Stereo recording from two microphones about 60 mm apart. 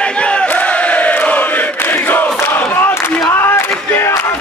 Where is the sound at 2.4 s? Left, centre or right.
Left.